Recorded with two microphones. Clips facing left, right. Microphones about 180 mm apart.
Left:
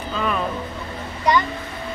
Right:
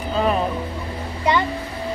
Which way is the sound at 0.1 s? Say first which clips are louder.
Right 5 dB; 40° right (ahead or behind).